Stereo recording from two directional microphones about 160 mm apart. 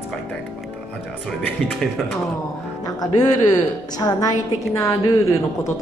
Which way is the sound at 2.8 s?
25° left (ahead or behind).